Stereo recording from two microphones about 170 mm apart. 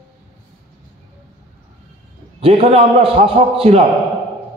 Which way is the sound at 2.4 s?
35° right (ahead or behind).